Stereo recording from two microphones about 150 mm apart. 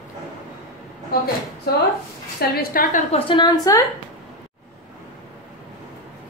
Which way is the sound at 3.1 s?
30° left (ahead or behind).